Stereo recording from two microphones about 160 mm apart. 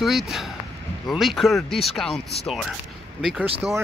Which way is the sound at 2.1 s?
40° left (ahead or behind).